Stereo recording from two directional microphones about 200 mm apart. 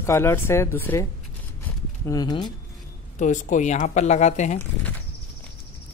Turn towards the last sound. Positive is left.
turn(degrees=35)  # may be behind; listen again after turning